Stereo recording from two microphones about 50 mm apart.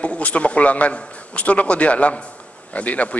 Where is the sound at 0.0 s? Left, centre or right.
Left.